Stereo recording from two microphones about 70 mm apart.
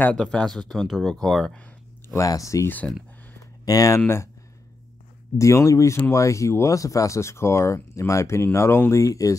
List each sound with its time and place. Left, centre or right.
0.1 s speech: centre
2.1 s speech: left
5.4 s speech: left
8.9 s speech: left